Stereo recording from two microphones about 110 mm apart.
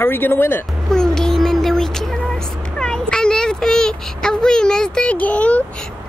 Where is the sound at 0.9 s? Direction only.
5° left (ahead or behind).